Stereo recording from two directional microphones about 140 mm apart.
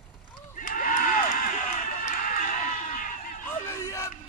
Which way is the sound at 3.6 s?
20° left (ahead or behind).